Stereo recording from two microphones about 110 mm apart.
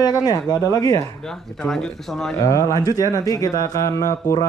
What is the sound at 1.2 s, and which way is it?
Speech, 5° left (ahead or behind).